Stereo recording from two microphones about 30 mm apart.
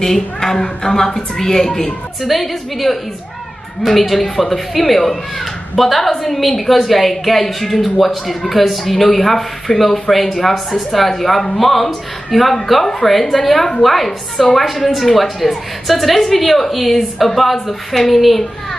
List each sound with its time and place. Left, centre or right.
0.0 s a woman's voice: centre
2.2 s a woman's voice: centre
4.2 s a woman's voice: centre